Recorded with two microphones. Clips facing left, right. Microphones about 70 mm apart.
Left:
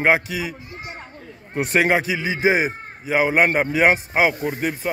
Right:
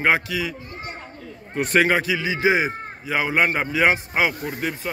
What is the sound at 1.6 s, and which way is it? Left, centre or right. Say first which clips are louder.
Speech: even; left.